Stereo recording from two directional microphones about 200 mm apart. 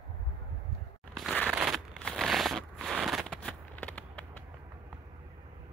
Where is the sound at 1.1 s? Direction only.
5° left (ahead or behind).